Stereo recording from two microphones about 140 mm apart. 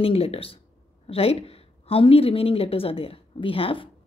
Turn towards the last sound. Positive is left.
turn(degrees=40)  # may be behind; listen again after turning